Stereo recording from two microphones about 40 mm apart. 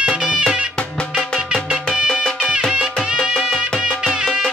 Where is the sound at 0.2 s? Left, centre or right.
Centre.